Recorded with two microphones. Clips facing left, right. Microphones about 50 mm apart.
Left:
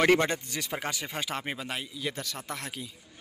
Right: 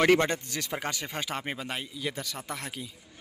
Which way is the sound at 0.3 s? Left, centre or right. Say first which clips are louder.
Even; centre.